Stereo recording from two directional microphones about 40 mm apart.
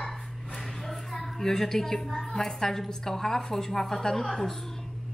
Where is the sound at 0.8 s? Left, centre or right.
Centre.